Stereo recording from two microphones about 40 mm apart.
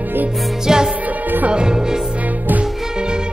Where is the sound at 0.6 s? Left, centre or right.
Centre.